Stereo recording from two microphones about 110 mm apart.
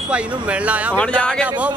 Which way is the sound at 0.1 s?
10° right (ahead or behind).